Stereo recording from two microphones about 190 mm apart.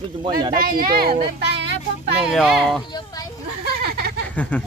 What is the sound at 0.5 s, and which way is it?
A child's voice, 50° right (ahead or behind).